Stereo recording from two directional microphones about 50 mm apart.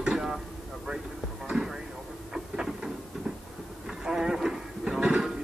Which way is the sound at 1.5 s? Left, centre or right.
Centre.